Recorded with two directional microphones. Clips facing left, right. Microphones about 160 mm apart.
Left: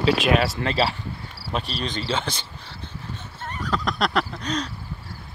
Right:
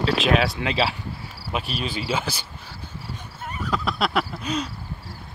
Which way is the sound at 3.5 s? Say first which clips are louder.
Even; 10° right (ahead or behind).